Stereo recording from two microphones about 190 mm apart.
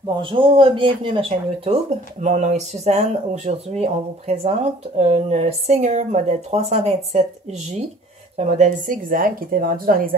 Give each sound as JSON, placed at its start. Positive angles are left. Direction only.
{"t": 0.0, "sound": "speech", "side_deg": -25}
{"t": 8.4, "sound": "a woman's voice", "side_deg": -40}